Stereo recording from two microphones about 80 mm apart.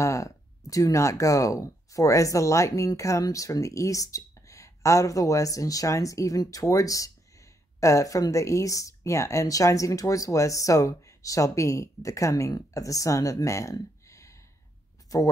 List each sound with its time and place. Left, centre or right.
0.0 s speech: left